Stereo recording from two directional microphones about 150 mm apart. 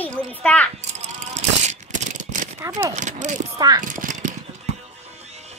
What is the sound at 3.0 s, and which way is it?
Speech, 55° right (ahead or behind).